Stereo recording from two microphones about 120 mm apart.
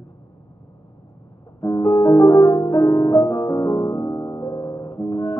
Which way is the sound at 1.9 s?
20° left (ahead or behind).